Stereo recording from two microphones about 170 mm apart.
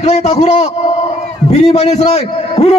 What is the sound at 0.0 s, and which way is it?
A man's voice, 40° left (ahead or behind).